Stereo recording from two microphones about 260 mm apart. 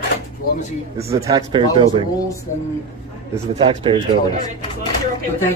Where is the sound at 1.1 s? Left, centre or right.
Centre.